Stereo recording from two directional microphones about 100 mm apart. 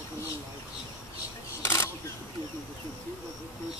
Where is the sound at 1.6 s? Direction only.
25° left (ahead or behind).